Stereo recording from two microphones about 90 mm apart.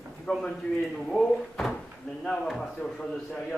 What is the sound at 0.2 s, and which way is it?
A man's voice, 5° left (ahead or behind).